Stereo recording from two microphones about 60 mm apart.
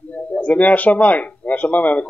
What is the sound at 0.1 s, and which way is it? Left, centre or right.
Speech, left.